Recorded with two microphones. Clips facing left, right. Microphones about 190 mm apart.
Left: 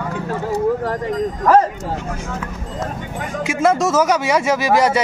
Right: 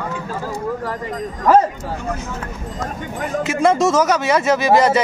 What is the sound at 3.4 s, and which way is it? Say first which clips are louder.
Speech: right 1 dB; 5° left (ahead or behind).